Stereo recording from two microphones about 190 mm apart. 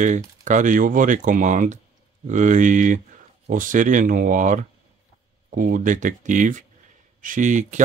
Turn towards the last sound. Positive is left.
turn(degrees=-40)  # may be behind; listen again after turning